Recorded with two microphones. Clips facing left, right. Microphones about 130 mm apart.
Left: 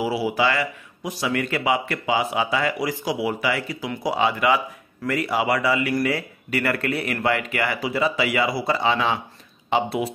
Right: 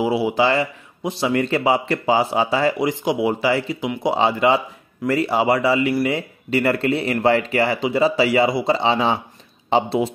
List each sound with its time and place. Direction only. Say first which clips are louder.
0.0 s speech: right 4 dB; 25° right (ahead or behind)